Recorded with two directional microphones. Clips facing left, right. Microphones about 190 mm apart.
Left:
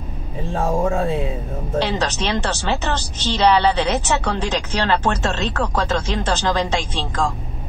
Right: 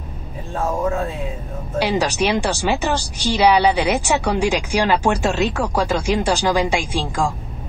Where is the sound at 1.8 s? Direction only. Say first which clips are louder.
Right 3 dB; 10° right (ahead or behind).